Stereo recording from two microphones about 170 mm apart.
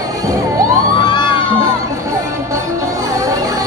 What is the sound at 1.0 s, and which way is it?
Crowd, 30° left (ahead or behind).